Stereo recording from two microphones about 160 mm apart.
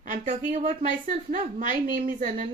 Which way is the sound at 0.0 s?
50° right (ahead or behind).